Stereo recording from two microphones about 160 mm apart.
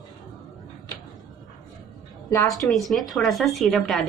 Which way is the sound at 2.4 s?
Centre (ahead or behind).